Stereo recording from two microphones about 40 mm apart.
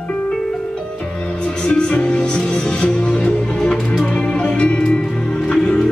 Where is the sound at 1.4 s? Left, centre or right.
Left.